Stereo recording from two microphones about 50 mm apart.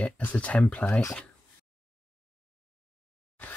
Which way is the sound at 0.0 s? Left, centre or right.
Left.